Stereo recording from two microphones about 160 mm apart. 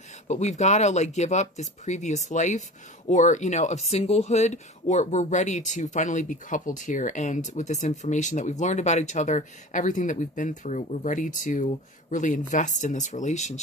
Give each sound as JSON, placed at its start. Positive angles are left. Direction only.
{"t": 0.3, "sound": "speech", "side_deg": 45}